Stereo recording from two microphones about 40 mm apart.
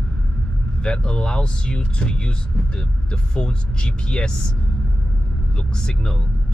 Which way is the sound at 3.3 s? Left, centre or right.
Left.